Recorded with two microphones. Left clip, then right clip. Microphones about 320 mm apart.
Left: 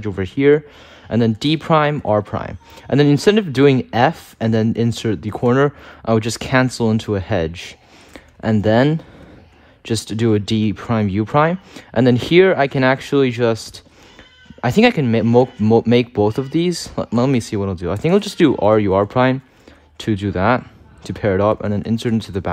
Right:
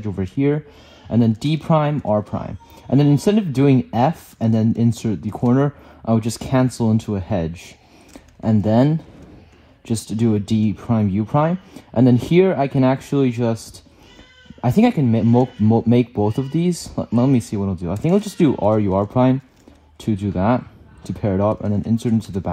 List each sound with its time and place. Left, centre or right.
0.0 s speech: right
10.2 s speech: right
14.6 s speech: right